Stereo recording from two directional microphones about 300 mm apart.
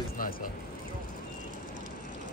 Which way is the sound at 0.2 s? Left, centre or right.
Left.